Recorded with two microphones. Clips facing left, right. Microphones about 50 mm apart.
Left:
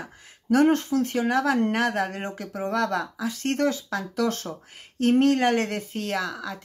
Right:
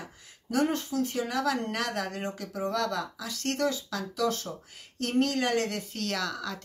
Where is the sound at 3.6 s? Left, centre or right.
Left.